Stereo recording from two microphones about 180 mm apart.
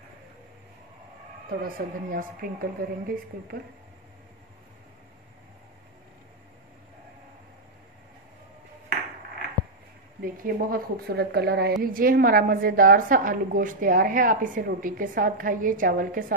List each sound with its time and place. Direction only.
1.6 s a woman's voice: 50° right (ahead or behind)
10.2 s speech: 55° right (ahead or behind)
11.8 s a woman's voice: 55° right (ahead or behind)